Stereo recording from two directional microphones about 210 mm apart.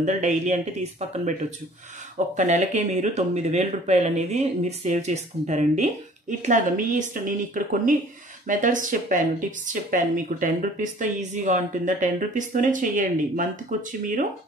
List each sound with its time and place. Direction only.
0.0 s speech: 35° right (ahead or behind)
2.1 s speech: 35° right (ahead or behind)